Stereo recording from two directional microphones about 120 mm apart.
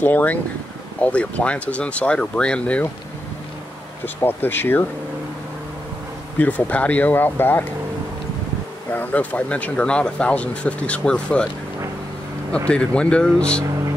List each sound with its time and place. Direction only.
0.0 s speech: 15° left (ahead or behind)
4.0 s speech: 15° left (ahead or behind)
6.3 s speech: 15° left (ahead or behind)
8.9 s speech: 15° left (ahead or behind)
12.6 s speech: 10° left (ahead or behind)